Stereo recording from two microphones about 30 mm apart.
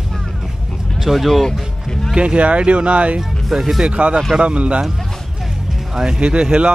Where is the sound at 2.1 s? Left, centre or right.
Right.